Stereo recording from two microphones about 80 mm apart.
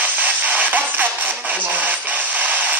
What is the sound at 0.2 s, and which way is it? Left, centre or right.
Music, right.